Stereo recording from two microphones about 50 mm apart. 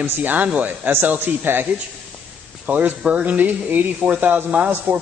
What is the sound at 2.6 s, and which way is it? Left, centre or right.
Speech, right.